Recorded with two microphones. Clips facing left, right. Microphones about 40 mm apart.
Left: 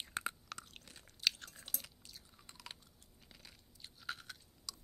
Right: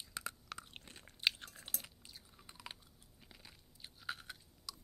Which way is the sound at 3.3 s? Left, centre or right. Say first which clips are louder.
Even; centre.